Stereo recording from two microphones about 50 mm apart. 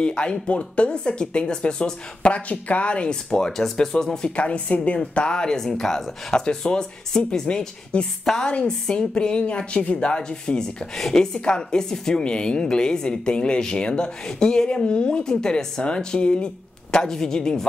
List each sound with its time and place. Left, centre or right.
0.0 s a woman's voice: centre
4.4 s a woman's voice: left